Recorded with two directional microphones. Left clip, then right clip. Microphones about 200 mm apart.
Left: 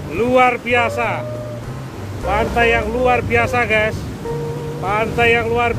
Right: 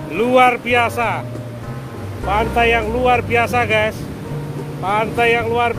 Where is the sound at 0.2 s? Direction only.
25° right (ahead or behind).